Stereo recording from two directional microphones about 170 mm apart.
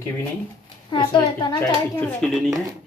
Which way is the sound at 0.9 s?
25° left (ahead or behind).